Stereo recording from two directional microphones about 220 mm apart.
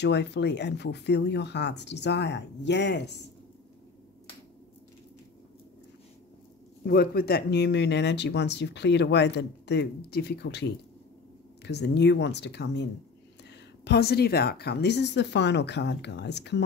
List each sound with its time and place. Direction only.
0.0 s speech: 50° left (ahead or behind)
6.8 s speech: 45° left (ahead or behind)